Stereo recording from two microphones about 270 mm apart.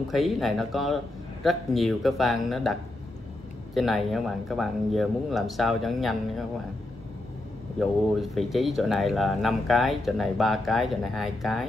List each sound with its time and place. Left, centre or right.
0.1 s speech: centre
7.8 s speech: centre